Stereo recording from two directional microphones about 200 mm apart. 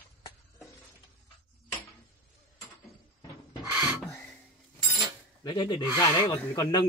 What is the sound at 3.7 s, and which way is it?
Filing, 10° right (ahead or behind).